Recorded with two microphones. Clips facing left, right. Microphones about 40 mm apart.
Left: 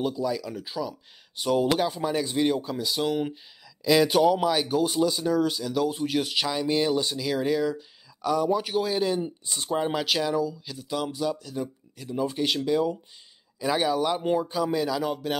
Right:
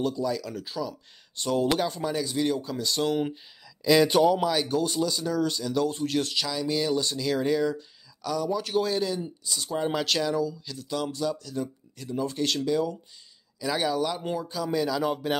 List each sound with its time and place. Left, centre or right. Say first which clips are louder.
0.0 s speech: even; centre
8.2 s speech: left 4 dB; centre
9.0 s speech: left 3 dB; left
9.8 s speech: even; centre
15.0 s speech: right 1 dB; centre